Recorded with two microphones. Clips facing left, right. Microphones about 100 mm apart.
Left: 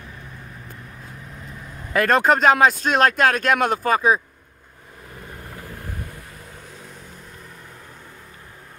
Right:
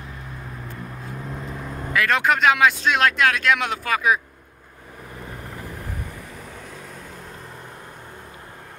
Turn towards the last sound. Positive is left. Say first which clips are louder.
# right 3 dB
turn(degrees=-30)  # may be behind; listen again after turning